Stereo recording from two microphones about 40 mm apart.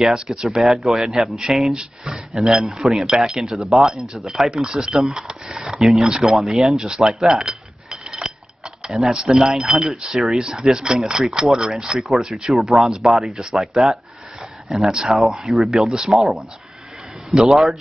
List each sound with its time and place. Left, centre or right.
0.0 s speech: centre
3.8 s speech: centre
4.5 s speech: centre
6.3 s speech: centre
7.3 s a sound: centre
8.9 s speech: centre
15.4 s speech: centre
17.3 s a man's voice: centre